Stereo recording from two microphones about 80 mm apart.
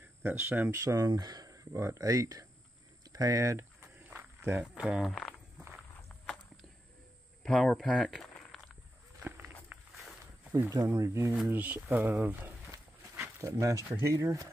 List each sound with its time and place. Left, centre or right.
0.2 s speech: right
0.7 s speech: right
4.0 s a sound: right
4.8 s speech: centre
7.4 s speech: centre
9.7 s wild animals: right
10.5 s speech: right
11.4 s speech: right
13.1 s dog: right
13.8 s speech: right